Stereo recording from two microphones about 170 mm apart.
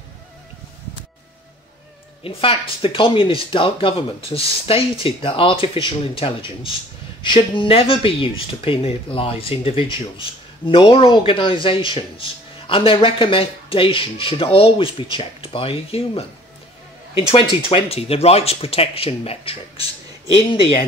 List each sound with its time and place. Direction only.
2.2 s speech: 30° left (ahead or behind)